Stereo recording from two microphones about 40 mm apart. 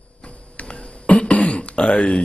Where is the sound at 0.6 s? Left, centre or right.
Left.